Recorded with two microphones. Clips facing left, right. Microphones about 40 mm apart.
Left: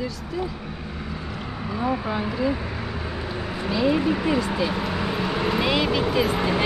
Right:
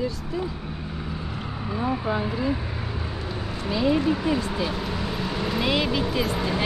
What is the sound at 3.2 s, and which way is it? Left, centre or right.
Vehicle, left.